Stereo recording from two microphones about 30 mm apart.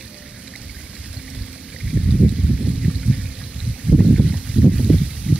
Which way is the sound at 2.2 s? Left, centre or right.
Right.